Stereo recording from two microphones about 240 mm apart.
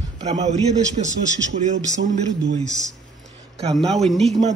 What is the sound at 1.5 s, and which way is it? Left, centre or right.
Speech, right.